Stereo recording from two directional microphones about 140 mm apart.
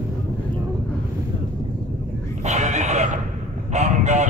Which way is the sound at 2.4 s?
55° right (ahead or behind).